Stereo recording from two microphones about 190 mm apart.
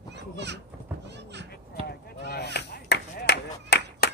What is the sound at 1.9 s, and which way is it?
Chop, 55° left (ahead or behind).